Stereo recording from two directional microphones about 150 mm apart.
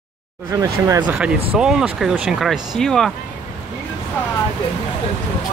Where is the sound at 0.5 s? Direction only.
25° right (ahead or behind).